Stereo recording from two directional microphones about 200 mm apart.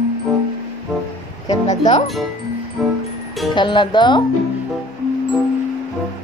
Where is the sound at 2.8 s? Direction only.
Centre (ahead or behind).